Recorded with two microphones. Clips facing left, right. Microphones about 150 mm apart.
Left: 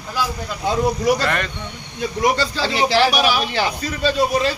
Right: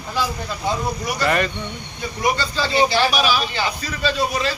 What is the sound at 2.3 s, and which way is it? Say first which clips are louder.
Speech: right 1 dB; 85° left.